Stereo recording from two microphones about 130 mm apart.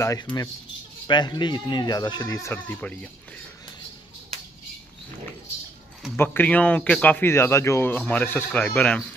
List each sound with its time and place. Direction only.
0.0 s speech: 30° left (ahead or behind)
2.7 s speech: 10° left (ahead or behind)
6.1 s speech: 15° left (ahead or behind)